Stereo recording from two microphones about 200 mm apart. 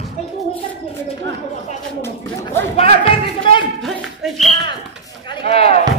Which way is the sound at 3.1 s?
25° left (ahead or behind).